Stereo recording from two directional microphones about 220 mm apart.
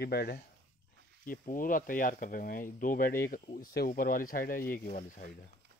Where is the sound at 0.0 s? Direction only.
45° left (ahead or behind).